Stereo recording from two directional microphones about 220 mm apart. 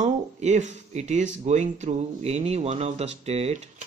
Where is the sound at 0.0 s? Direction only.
30° right (ahead or behind).